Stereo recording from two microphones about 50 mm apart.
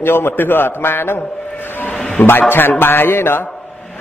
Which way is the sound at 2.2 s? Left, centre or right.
Left.